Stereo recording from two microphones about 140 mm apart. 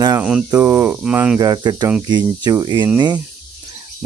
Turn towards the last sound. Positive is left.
turn(degrees=-30)  # may be behind; listen again after turning